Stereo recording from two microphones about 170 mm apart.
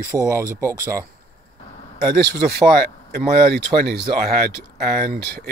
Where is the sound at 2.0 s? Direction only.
70° right (ahead or behind).